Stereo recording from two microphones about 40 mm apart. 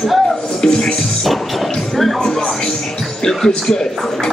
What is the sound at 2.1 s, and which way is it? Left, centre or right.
Music, centre.